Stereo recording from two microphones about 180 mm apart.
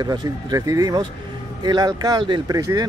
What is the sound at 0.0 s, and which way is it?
Speech, 20° right (ahead or behind).